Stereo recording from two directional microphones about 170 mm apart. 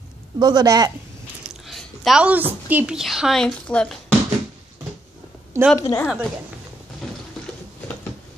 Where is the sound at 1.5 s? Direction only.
Centre (ahead or behind).